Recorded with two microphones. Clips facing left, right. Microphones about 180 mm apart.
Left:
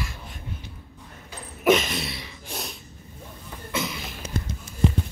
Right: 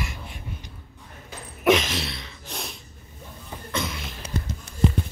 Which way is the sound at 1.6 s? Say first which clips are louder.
Even; centre (ahead or behind).